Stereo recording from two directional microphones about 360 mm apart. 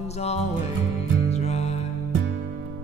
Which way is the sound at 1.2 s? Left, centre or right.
Centre.